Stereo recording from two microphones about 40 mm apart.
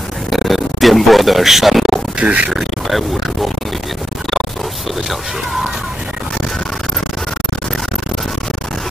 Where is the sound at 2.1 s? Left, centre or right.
Right.